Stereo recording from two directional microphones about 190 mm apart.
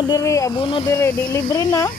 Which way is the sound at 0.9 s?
15° left (ahead or behind).